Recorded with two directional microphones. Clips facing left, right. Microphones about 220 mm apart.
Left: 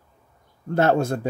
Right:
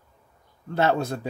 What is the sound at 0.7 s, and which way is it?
Speech, 50° left (ahead or behind).